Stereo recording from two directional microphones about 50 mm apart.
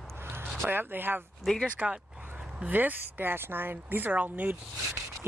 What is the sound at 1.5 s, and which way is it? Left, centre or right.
Speech, centre.